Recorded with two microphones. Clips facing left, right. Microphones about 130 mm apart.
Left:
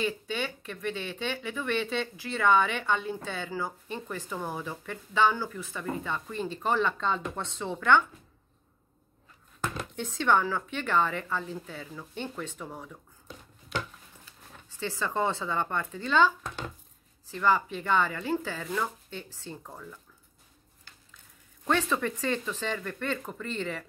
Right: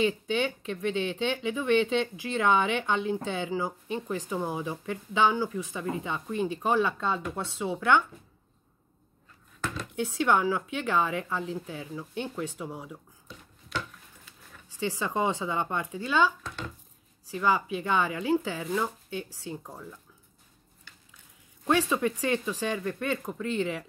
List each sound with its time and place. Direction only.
0.0 s speech: 20° right (ahead or behind)
9.9 s speech: 10° right (ahead or behind)
14.8 s speech: 15° right (ahead or behind)
21.6 s speech: 15° right (ahead or behind)